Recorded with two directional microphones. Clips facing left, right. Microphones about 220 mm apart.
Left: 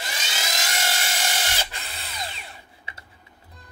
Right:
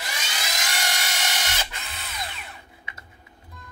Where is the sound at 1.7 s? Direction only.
30° left (ahead or behind).